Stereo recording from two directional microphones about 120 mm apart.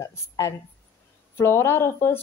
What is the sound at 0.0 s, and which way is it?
Speech, 25° left (ahead or behind).